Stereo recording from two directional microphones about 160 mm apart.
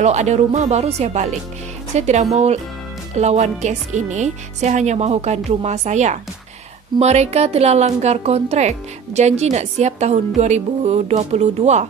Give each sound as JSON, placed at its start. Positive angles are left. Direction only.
{"t": 0.0, "sound": "speech", "side_deg": -45}